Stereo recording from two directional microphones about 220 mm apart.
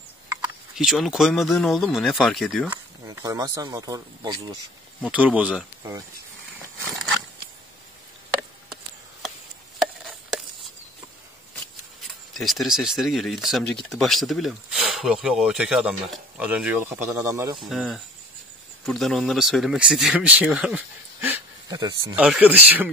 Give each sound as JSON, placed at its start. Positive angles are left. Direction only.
{"t": 0.7, "sound": "speech", "side_deg": 0}
{"t": 3.1, "sound": "speech", "side_deg": -15}
{"t": 5.1, "sound": "speech", "side_deg": -5}
{"t": 9.8, "sound": "a sound", "side_deg": 0}
{"t": 12.0, "sound": "speech", "side_deg": 0}
{"t": 17.6, "sound": "speech", "side_deg": 0}
{"t": 22.2, "sound": "speech", "side_deg": -5}